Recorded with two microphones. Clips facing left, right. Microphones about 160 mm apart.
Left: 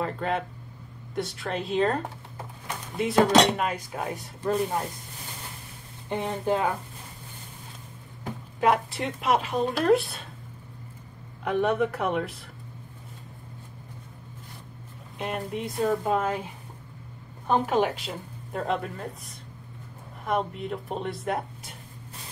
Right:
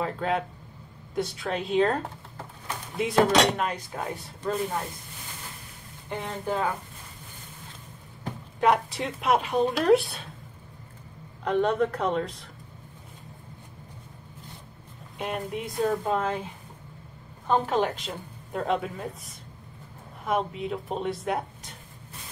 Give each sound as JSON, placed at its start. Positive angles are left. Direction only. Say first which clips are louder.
{"t": 0.0, "sound": "a woman's voice", "louder": "right 1 dB", "side_deg": 0}
{"t": 3.0, "sound": "a woman's voice", "louder": "left 1 dB", "side_deg": 0}
{"t": 6.0, "sound": "speech", "louder": "left 4 dB", "side_deg": 20}
{"t": 8.5, "sound": "a woman's voice", "louder": "even", "side_deg": 0}
{"t": 11.4, "sound": "speech", "louder": "even", "side_deg": 5}
{"t": 15.1, "sound": "a woman's voice", "louder": "even", "side_deg": 0}
{"t": 17.5, "sound": "a woman's voice", "louder": "left 1 dB", "side_deg": 10}